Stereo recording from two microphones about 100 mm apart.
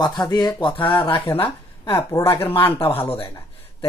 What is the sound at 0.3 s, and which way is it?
Speech, 45° left (ahead or behind).